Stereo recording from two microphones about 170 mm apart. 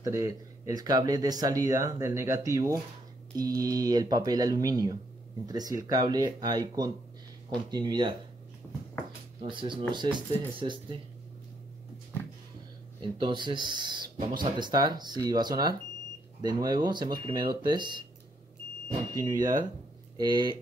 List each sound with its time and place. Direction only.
0.0 s speech: 20° right (ahead or behind)
9.4 s speech: 30° right (ahead or behind)
13.2 s speech: 30° right (ahead or behind)
19.1 s speech: 25° right (ahead or behind)